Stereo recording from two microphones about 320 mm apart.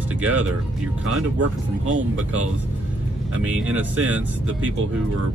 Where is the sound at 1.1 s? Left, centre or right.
Right.